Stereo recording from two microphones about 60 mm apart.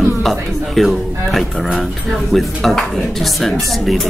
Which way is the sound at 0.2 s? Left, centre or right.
Centre.